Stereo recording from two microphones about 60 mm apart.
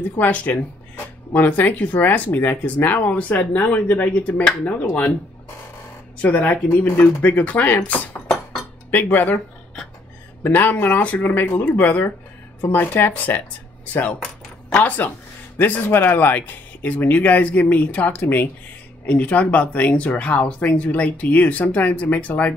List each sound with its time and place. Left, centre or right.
0.2 s speech: left
6.2 s speech: left
10.4 s speech: left
14.8 s speech: left